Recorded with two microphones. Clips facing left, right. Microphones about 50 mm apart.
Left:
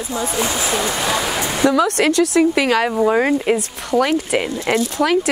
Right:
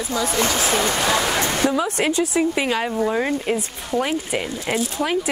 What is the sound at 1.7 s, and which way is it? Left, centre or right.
A woman's voice, left.